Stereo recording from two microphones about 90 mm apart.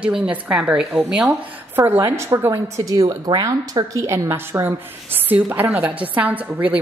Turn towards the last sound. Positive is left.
turn(degrees=-15)  # may be behind; listen again after turning